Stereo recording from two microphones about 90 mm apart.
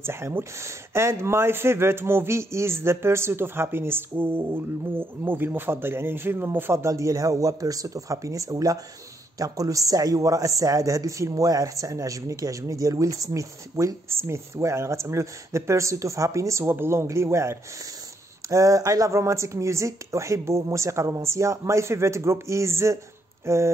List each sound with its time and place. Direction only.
0.0 s speech: 25° right (ahead or behind)